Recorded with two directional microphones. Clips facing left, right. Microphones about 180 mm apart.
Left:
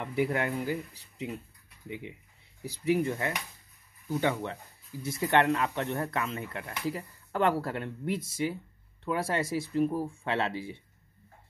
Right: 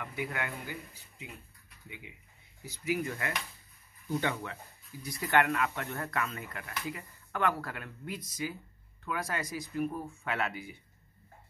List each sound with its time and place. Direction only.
0.0 s speech: 30° left (ahead or behind)
2.6 s speech: 35° left (ahead or behind)
5.0 s speech: 25° left (ahead or behind)